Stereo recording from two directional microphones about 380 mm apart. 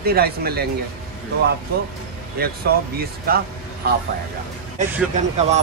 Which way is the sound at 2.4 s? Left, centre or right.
Right.